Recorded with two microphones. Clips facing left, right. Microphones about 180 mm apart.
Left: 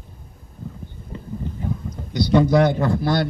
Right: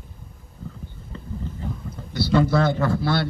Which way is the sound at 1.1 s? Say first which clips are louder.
Left 3 dB; 15° left (ahead or behind).